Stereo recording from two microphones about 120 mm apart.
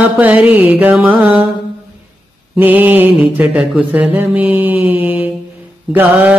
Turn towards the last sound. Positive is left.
turn(degrees=-15)  # may be behind; listen again after turning